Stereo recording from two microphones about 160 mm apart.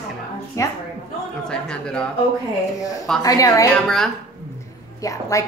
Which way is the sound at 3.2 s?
20° left (ahead or behind).